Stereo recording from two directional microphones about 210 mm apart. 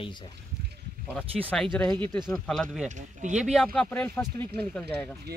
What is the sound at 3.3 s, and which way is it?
Speech, centre (ahead or behind).